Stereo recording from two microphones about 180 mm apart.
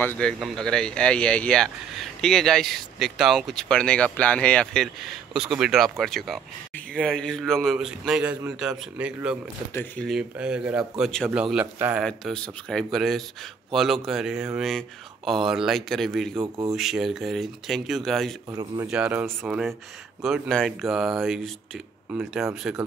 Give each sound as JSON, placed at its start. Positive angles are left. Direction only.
{"t": 0.0, "sound": "speech", "side_deg": 5}
{"t": 11.5, "sound": "a man's voice", "side_deg": -10}
{"t": 12.0, "sound": "speech", "side_deg": 5}
{"t": 18.5, "sound": "speech", "side_deg": -20}
{"t": 18.9, "sound": "speech", "side_deg": -5}